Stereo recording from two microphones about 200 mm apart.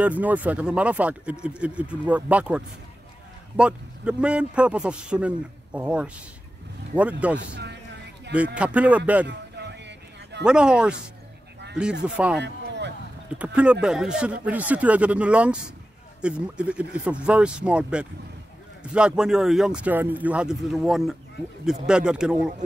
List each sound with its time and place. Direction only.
0.0 s a man's voice: 5° right (ahead or behind)
7.3 s a man's voice: 60° right (ahead or behind)
8.3 s speech: 5° right (ahead or behind)
9.3 s a sound: 60° right (ahead or behind)
10.4 s a man's voice: 5° right (ahead or behind)
12.4 s a sound: 60° right (ahead or behind)
13.4 s a man's voice: 5° right (ahead or behind)